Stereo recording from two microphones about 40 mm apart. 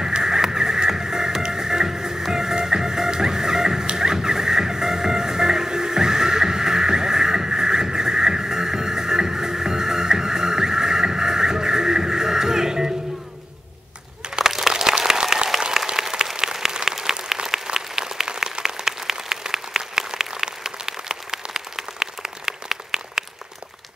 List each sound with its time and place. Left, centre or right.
0.0 s music: centre
14.7 s applause: centre